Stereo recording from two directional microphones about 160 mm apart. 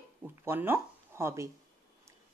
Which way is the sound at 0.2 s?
10° right (ahead or behind).